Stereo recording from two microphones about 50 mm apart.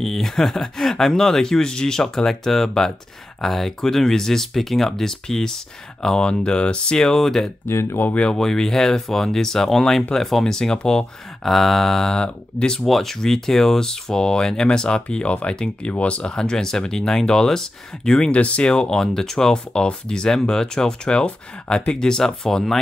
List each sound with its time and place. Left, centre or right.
0.0 s speech: centre
7.6 s speech: left
8.1 s speech: left
8.4 s speech: centre
12.8 s speech: centre